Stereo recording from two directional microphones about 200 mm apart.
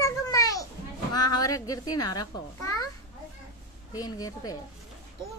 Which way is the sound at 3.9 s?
20° left (ahead or behind).